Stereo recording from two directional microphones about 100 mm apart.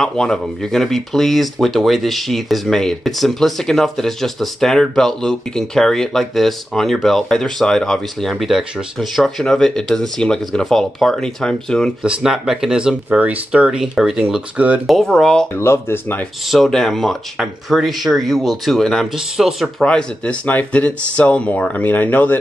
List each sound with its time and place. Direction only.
0.0 s speech: 5° left (ahead or behind)
12.0 s speech: 5° right (ahead or behind)
14.9 s speech: centre (ahead or behind)
15.5 s speech: 25° left (ahead or behind)
16.4 s speech: centre (ahead or behind)
19.8 s speech: 10° left (ahead or behind)